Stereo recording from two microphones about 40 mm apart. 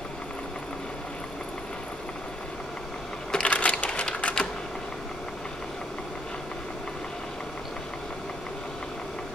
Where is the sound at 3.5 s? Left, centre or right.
Left.